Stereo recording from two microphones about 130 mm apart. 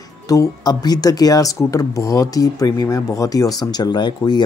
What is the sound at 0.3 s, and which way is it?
Speech, 30° left (ahead or behind).